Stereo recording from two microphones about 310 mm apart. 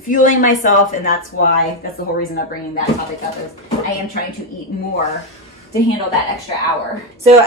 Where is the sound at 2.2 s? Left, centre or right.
Left.